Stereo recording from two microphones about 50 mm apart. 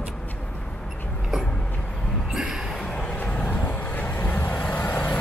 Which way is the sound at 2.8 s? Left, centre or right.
Left.